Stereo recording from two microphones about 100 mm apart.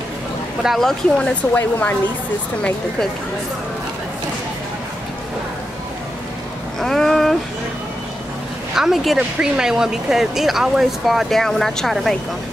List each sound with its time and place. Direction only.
0.6 s speech: centre (ahead or behind); by 2.0 s 20° left (ahead or behind)
6.8 s speech: 5° left (ahead or behind)
8.7 s speech: 5° right (ahead or behind)